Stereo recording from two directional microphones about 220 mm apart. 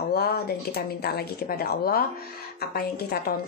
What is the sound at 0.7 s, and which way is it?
A woman's voice, 45° left (ahead or behind).